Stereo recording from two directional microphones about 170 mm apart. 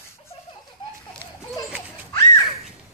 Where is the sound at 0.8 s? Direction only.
30° left (ahead or behind).